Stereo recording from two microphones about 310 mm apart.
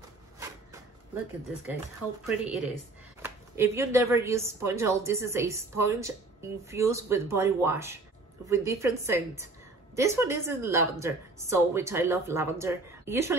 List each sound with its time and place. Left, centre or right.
2.2 s a woman's voice: centre